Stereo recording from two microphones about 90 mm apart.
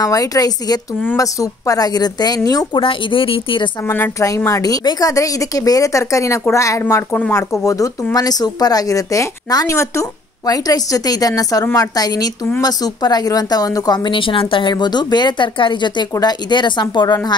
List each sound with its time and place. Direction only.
0.0 s a woman's voice: 40° left (ahead or behind)
2.8 s speech: 75° left (ahead or behind)
3.8 s speech: 30° left (ahead or behind)
4.5 s speech: 40° left (ahead or behind)
7.6 s a woman's voice: 40° left (ahead or behind)